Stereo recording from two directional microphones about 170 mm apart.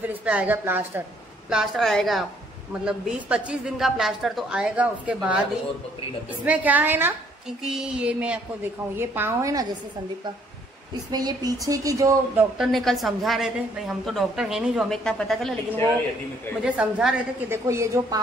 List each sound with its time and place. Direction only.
0.0 s a woman's voice: 10° right (ahead or behind)
6.4 s a woman's voice: 10° right (ahead or behind)
11.1 s speech: 25° right (ahead or behind)
12.5 s a woman's voice: centre (ahead or behind); by 18.2 s 15° right (ahead or behind)